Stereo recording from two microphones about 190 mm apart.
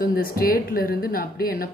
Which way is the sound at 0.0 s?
50° left (ahead or behind).